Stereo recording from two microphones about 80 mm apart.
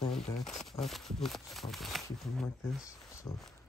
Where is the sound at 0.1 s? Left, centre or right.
Centre.